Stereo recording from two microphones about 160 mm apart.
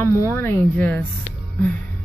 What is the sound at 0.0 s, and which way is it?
Speech, 20° left (ahead or behind).